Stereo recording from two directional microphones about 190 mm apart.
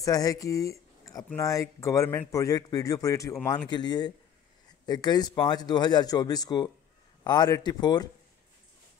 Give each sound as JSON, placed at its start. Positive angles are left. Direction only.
{"t": 0.0, "sound": "speech", "side_deg": 20}